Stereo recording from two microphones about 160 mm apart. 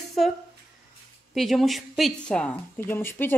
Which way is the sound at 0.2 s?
Centre (ahead or behind).